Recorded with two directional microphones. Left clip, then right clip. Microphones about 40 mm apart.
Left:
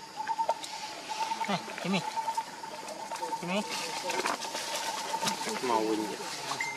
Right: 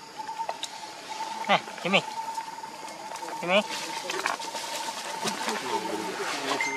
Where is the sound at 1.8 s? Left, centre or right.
Right.